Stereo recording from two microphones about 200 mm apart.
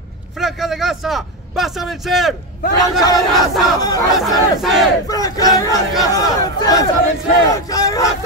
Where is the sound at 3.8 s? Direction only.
20° left (ahead or behind).